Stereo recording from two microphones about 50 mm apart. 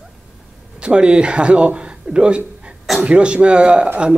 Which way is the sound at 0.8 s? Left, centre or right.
Centre.